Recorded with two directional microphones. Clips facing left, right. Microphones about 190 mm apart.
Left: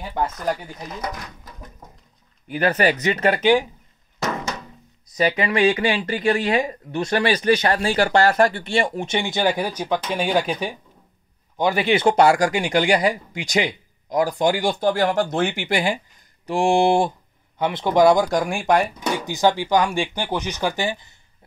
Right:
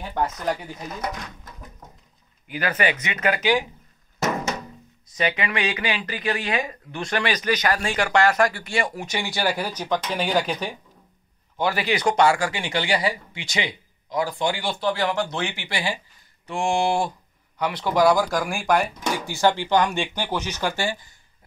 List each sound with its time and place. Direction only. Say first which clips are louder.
0.2 s speech: left 1 dB; centre (ahead or behind)
2.4 s speech: left 5 dB; 40° left (ahead or behind)
5.2 s speech: left 6 dB; 40° left (ahead or behind)
6.2 s speech: left 6 dB; 25° left (ahead or behind); by 10.8 s 5° left (ahead or behind)
11.5 s a man's voice: left 4 dB; 15° left (ahead or behind)
12.3 s speech: left 5 dB; 40° left (ahead or behind)
16.4 s speech: left 5 dB; 35° left (ahead or behind)
18.8 s speech: left 3 dB; centre (ahead or behind)
19.1 s speech: left 2 dB; 15° left (ahead or behind)